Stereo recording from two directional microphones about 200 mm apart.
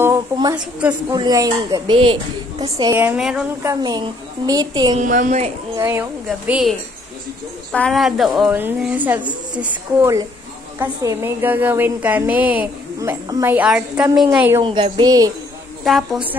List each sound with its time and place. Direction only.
0.0 s a woman's voice: 15° right (ahead or behind)
2.8 s a woman's voice: 15° right (ahead or behind)
3.6 s speech: 20° right (ahead or behind)
4.9 s a woman's voice: 40° right (ahead or behind)
5.8 s a woman's voice: 10° right (ahead or behind)
7.7 s a woman's voice: 5° left (ahead or behind)
14.6 s speech: 25° right (ahead or behind)
15.8 s a woman's voice: centre (ahead or behind)